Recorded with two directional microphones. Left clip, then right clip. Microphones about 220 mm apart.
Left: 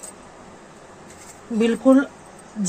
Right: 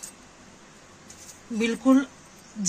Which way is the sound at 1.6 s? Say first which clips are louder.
Left 6 dB; 50° right (ahead or behind).